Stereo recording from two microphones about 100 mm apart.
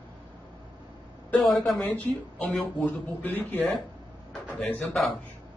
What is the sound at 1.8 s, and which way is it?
A man's voice, 15° left (ahead or behind).